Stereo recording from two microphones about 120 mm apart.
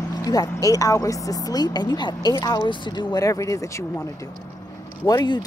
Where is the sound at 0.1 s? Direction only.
30° left (ahead or behind).